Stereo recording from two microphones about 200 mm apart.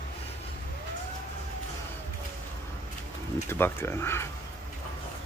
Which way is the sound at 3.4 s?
10° left (ahead or behind).